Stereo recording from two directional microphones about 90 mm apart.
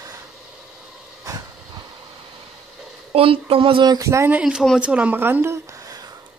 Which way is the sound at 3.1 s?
90° right.